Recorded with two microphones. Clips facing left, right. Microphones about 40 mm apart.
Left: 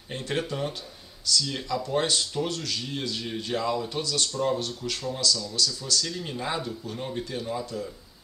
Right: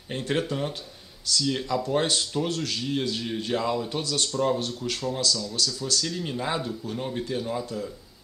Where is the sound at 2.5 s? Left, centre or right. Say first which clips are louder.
Right 3 dB; right.